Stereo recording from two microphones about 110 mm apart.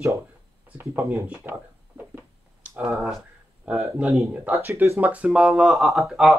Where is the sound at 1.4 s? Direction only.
20° right (ahead or behind).